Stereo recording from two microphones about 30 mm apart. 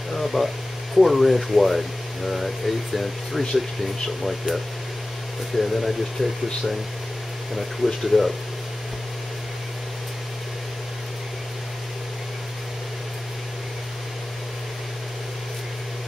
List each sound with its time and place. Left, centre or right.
0.1 s a sound: centre
0.9 s speech: centre
5.6 s speech: centre